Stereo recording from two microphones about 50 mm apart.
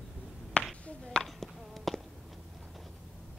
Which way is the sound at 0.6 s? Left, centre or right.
Left.